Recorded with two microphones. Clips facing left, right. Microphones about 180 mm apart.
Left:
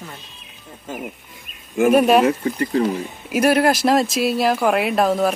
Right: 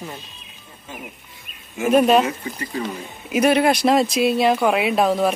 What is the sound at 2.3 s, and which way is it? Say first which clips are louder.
Speech: left 8 dB; 55° left (ahead or behind).